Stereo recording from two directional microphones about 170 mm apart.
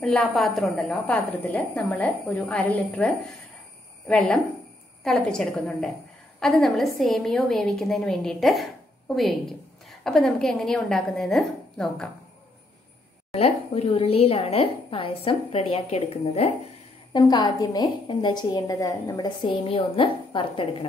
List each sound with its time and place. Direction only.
0.0 s a woman's voice: 5° left (ahead or behind)
4.1 s a woman's voice: 5° left (ahead or behind)
9.8 s a woman's voice: 5° left (ahead or behind)
13.3 s a woman's voice: 35° left (ahead or behind)
17.1 s a woman's voice: 25° left (ahead or behind)